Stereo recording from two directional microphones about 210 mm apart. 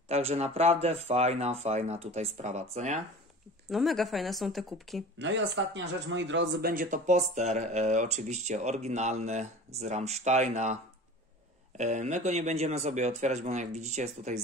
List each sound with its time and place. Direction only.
0.1 s speech: 30° right (ahead or behind)
3.6 s speech: centre (ahead or behind)
5.2 s speech: 60° right (ahead or behind); by 14.4 s 30° right (ahead or behind)